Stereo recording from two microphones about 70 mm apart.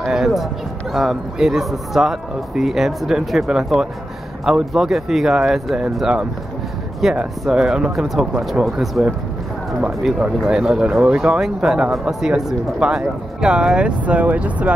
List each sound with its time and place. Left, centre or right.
0.0 s run: centre
0.9 s speech: centre
9.8 s speech: centre